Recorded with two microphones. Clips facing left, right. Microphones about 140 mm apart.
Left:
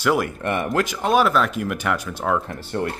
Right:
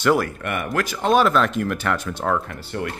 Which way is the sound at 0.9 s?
5° left (ahead or behind).